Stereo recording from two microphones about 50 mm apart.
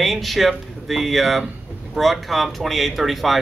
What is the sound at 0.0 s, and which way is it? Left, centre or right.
Speech, centre.